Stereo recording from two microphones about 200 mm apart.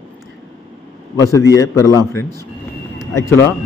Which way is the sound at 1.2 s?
15° left (ahead or behind).